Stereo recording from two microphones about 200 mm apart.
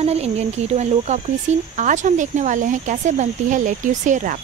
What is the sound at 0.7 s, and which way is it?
Speech, 35° right (ahead or behind).